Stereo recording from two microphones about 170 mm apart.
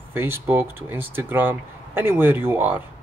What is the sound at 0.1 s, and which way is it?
Speech, 15° right (ahead or behind).